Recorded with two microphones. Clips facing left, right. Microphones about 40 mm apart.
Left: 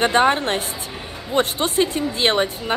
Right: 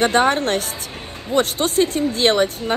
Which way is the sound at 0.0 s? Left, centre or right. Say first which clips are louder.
Even; centre.